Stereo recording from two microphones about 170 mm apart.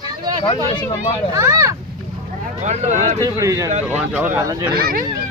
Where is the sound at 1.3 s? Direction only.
15° right (ahead or behind).